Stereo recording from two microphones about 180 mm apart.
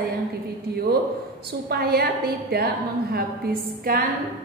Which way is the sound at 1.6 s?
60° right (ahead or behind).